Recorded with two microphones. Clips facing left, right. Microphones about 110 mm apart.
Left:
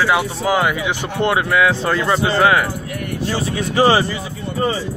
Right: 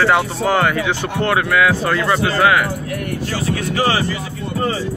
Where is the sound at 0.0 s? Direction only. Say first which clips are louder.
Right 2 dB; 10° left (ahead or behind).